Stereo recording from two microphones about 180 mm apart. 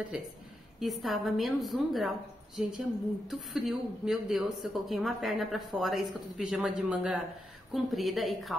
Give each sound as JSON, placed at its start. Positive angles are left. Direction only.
{"t": 0.1, "sound": "speech", "side_deg": -5}